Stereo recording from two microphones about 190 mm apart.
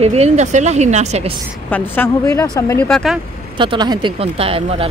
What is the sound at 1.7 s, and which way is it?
Speech, 10° left (ahead or behind).